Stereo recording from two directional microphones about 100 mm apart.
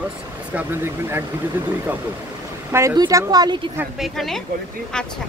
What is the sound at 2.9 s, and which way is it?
Speech, 45° right (ahead or behind).